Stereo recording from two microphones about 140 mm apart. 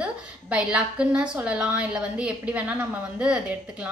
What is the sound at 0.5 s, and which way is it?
A woman's voice, 5° right (ahead or behind).